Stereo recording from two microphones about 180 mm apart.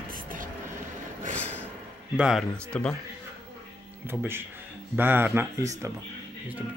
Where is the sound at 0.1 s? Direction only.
50° right (ahead or behind).